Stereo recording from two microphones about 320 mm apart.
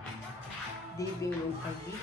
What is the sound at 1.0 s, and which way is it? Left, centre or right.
Speech, centre.